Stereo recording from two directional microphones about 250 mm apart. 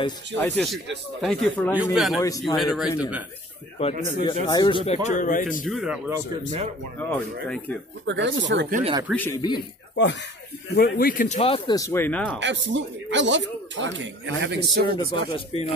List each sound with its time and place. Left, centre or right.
0.4 s speech: centre
3.8 s speech: left
5.0 s speech: left
5.7 s speech: centre
7.0 s speech: centre
8.1 s a man's voice: right
8.7 s speech: right
9.1 s speech: centre
9.6 s speech: left; by 12.4 s centre
12.4 s a man's voice: right
15.0 s speech: left